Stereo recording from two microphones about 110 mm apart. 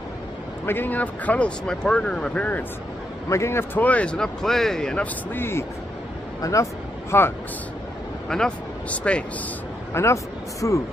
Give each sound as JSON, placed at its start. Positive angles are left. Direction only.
{"t": 0.7, "sound": "speech", "side_deg": 15}
{"t": 3.3, "sound": "speech", "side_deg": 25}
{"t": 5.3, "sound": "speech", "side_deg": 20}
{"t": 8.3, "sound": "speech", "side_deg": 5}
{"t": 9.9, "sound": "speech", "side_deg": 25}